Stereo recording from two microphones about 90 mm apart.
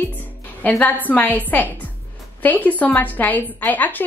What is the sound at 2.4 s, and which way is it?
A woman's voice, 15° left (ahead or behind).